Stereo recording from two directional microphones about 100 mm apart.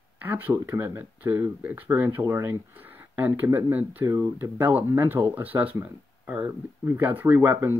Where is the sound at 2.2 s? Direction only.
30° right (ahead or behind).